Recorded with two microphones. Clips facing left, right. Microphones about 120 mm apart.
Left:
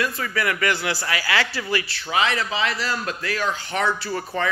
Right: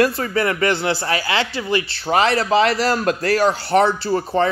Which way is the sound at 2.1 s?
35° right (ahead or behind).